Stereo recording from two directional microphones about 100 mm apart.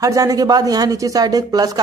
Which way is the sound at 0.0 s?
35° right (ahead or behind).